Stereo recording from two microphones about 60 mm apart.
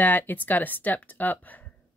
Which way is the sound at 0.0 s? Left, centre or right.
Left.